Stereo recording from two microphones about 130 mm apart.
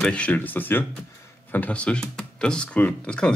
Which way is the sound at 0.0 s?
10° left (ahead or behind).